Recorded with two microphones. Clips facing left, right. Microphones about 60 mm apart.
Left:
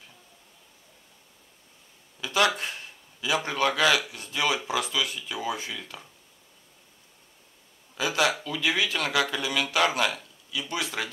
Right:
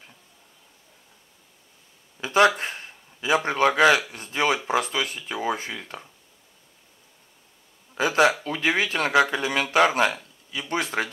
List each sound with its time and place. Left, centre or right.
2.1 s speech: right
7.9 s speech: right